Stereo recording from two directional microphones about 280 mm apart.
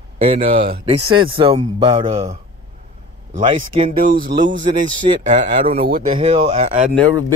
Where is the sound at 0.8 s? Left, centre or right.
Centre.